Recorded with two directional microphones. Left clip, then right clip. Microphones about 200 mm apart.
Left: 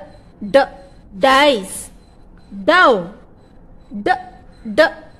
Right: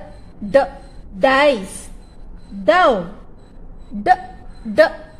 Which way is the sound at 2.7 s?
35° left (ahead or behind).